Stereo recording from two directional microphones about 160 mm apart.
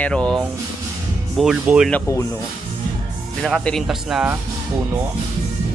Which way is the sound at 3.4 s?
5° left (ahead or behind).